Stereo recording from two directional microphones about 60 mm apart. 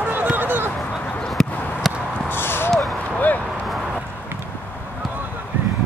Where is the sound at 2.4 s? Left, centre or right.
Left.